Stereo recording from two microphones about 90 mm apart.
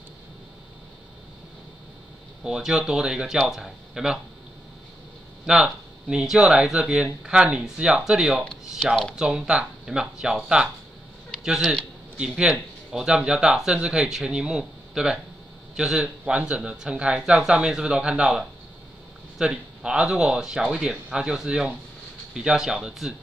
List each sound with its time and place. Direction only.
2.4 s speech: 5° right (ahead or behind)
5.5 s speech: 10° right (ahead or behind)